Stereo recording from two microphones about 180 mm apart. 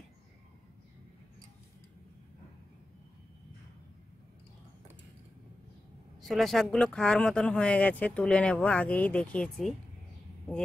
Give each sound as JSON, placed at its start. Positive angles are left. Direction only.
{"t": 6.2, "sound": "speech", "side_deg": 0}